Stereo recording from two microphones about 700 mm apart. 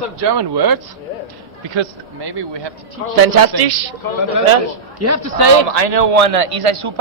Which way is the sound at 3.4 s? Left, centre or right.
Right.